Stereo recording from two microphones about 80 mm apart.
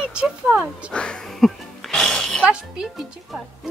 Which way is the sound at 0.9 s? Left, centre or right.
Centre.